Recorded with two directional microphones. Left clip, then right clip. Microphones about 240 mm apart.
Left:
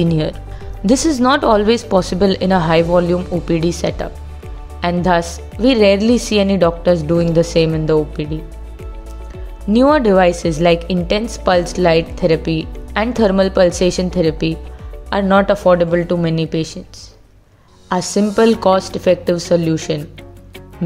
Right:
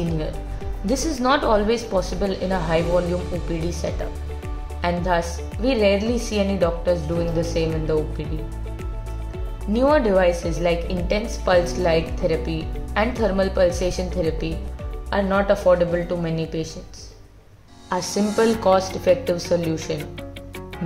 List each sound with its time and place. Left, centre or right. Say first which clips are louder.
0.8 s a woman's voice: left 7 dB; left
9.7 s a woman's voice: left 6 dB; left
17.8 s a woman's voice: left 6 dB; left